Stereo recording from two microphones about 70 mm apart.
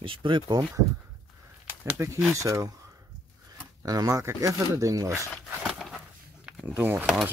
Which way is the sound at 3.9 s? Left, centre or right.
Right.